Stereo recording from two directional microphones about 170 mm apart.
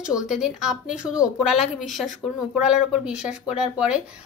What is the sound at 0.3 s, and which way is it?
A woman's voice, 5° right (ahead or behind).